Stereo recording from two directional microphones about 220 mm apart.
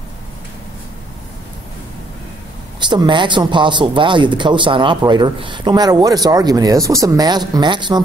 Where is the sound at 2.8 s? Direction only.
20° right (ahead or behind).